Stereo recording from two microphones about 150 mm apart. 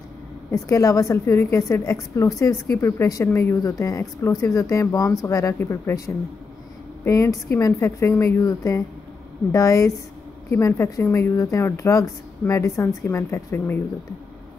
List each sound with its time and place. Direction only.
0.5 s speech: 20° left (ahead or behind)